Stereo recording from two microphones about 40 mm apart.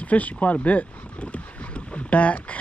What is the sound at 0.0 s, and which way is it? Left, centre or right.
Speech, left.